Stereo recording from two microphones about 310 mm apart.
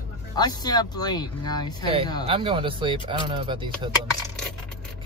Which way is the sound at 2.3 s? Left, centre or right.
Centre.